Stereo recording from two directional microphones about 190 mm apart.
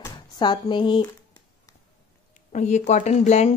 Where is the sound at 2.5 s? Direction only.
40° left (ahead or behind).